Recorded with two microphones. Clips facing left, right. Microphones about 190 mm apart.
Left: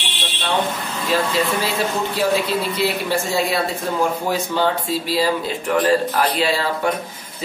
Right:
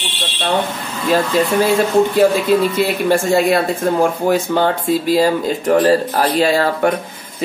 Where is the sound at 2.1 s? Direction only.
50° right (ahead or behind).